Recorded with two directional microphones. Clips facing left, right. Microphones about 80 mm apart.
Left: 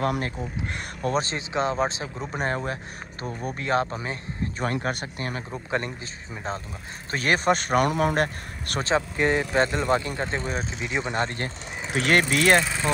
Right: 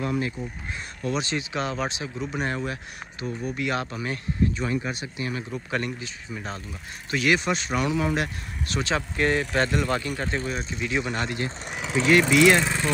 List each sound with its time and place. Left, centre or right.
0.0 s speech: left
1.1 s speech: left
4.6 s speech: left
5.5 s speech: left
8.9 s speech: left
11.2 s speech: left